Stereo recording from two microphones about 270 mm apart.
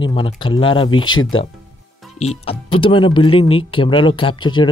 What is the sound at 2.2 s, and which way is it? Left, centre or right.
Speech, left.